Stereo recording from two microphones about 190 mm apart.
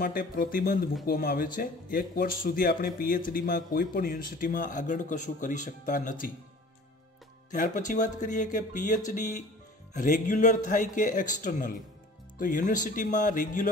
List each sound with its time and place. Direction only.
0.0 s speech: 50° left (ahead or behind)
7.5 s speech: 45° left (ahead or behind)